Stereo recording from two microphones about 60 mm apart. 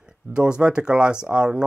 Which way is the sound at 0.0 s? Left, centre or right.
Centre.